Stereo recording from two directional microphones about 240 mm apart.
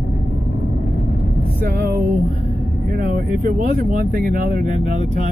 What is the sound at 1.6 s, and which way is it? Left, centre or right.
Speech, right.